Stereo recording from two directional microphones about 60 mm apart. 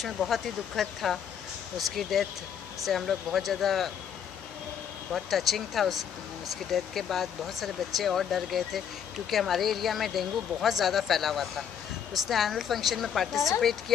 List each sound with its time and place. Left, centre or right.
0.0 s speech: centre
5.1 s speech: centre